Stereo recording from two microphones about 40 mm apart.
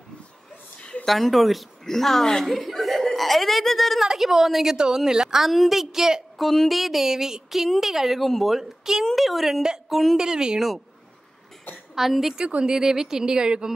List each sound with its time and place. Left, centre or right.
1.0 s a woman's voice: centre
2.4 s speech: centre
4.0 s a woman's voice: centre
4.7 s a woman's voice: centre
5.4 s a woman's voice: centre
6.3 s a woman's voice: centre
6.8 s a woman's voice: centre
10.1 s a woman's voice: centre
11.9 s a woman's voice: centre; by 13.7 s right